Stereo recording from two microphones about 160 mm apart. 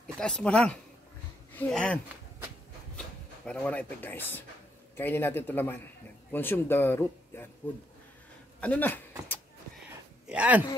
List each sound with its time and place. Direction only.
0.0 s speech: 5° left (ahead or behind)
3.4 s speech: 10° left (ahead or behind)
8.5 s speech: 10° left (ahead or behind)
10.2 s speech: 10° right (ahead or behind)